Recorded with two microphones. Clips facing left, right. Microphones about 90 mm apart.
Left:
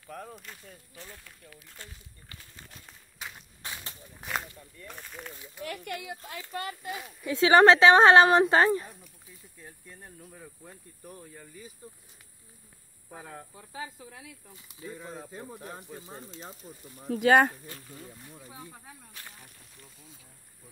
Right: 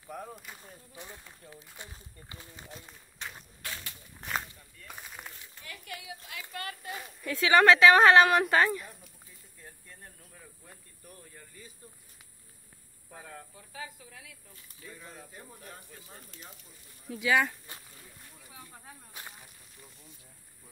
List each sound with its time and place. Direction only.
0.0 s whip: 10° right (ahead or behind)
0.6 s speech: 20° right (ahead or behind)
2.9 s run: centre (ahead or behind)
4.2 s speech: centre (ahead or behind)
5.6 s speech: 65° left (ahead or behind)
6.8 s speech: 5° left (ahead or behind)
7.2 s speech: 25° left (ahead or behind)
9.7 s speech: 10° left (ahead or behind)
10.4 s speech: 25° left (ahead or behind)
13.1 s speech: 15° left (ahead or behind)
14.9 s speech: 35° left (ahead or behind)
17.0 s speech: 60° left (ahead or behind)
18.5 s speech: 25° left (ahead or behind)
19.1 s whip: 15° right (ahead or behind)